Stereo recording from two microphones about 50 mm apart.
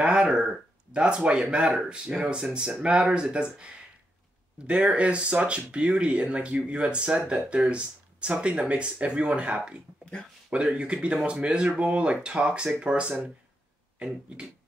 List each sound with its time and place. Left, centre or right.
0.2 s speech: centre